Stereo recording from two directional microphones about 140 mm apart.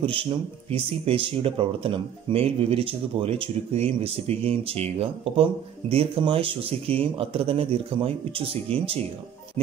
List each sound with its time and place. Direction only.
0.0 s speech: 40° right (ahead or behind)